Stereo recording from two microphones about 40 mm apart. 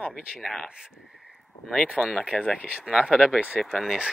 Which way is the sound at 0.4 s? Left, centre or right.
Centre.